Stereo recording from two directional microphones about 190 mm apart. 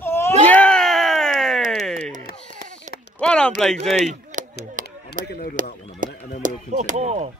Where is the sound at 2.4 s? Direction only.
40° right (ahead or behind).